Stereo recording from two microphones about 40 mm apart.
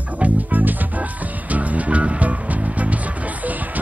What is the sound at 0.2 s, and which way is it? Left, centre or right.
Music, right.